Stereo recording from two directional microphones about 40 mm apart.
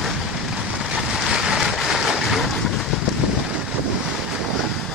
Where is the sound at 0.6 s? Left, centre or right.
Centre.